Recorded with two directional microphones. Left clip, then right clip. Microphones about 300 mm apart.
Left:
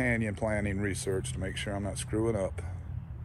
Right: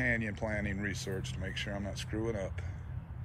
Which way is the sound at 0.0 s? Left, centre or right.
Centre.